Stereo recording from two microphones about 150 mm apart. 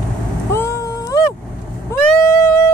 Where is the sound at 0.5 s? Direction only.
15° left (ahead or behind).